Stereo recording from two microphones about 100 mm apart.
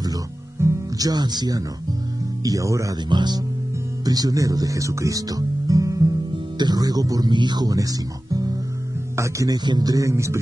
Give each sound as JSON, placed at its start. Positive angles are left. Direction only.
{"t": 0.6, "sound": "speech", "side_deg": -35}
{"t": 2.4, "sound": "speech", "side_deg": -35}
{"t": 3.1, "sound": "speech", "side_deg": -45}
{"t": 9.7, "sound": "speech", "side_deg": -40}